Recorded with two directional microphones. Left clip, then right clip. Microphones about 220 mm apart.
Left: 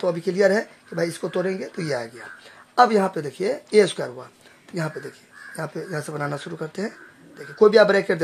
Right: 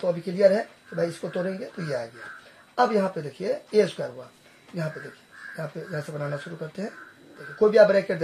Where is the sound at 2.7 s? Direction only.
45° left (ahead or behind).